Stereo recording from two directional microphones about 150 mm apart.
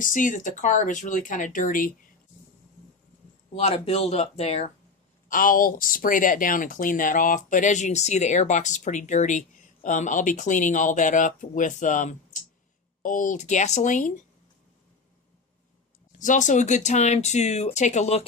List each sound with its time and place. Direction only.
0.0 s speech: 60° left (ahead or behind)
3.5 s speech: 45° left (ahead or behind)
5.3 s speech: 65° left (ahead or behind)
16.2 s speech: 55° left (ahead or behind)